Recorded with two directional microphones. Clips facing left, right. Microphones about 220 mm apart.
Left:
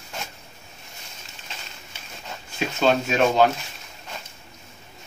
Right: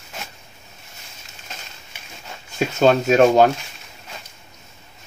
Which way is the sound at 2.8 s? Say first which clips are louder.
Right 6 dB; 45° right (ahead or behind).